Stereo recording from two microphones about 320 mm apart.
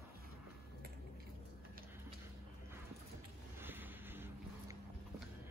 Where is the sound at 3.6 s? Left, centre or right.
Centre.